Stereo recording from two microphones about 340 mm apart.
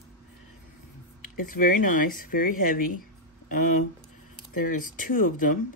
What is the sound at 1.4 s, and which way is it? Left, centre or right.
Speech, left.